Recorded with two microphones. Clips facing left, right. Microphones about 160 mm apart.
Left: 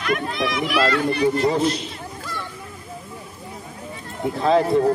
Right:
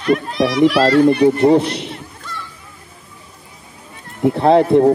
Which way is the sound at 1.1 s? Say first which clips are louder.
Right 8 dB; 60° right (ahead or behind).